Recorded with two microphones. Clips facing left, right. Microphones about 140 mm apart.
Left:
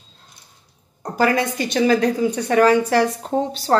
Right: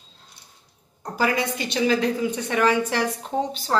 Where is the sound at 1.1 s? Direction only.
50° left (ahead or behind).